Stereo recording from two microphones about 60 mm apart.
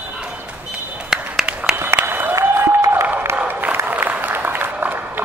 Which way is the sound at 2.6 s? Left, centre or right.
Right.